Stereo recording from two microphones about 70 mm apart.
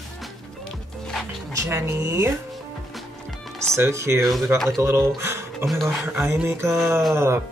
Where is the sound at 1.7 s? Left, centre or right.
Right.